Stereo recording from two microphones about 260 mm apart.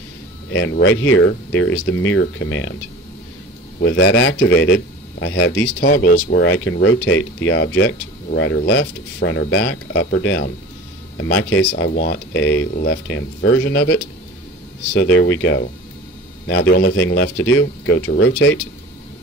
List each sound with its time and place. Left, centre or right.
0.5 s speech: left
3.8 s speech: left